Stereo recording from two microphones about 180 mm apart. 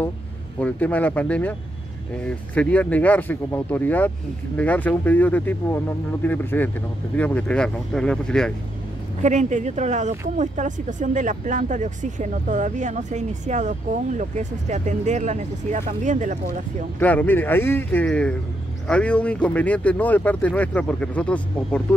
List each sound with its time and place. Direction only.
0.6 s speech: 10° left (ahead or behind)
9.2 s speech: 40° right (ahead or behind)
17.0 s speech: 10° left (ahead or behind)